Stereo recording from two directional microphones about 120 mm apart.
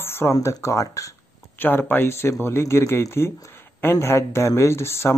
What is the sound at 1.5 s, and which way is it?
Speech, 15° left (ahead or behind).